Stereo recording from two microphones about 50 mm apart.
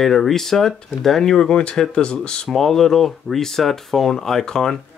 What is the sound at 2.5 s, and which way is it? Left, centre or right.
Speech, centre.